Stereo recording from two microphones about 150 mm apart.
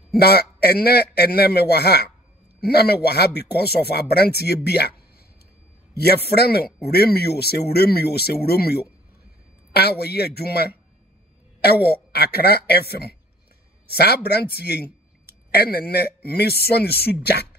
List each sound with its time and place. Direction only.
0.1 s speech: 90° left
5.9 s speech: 90° left